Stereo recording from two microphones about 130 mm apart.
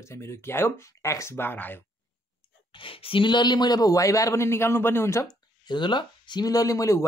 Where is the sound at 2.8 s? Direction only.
45° left (ahead or behind); by 5.3 s 20° left (ahead or behind).